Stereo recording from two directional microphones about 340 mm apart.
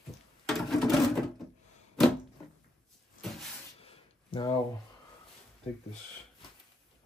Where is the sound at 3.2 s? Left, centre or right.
Left.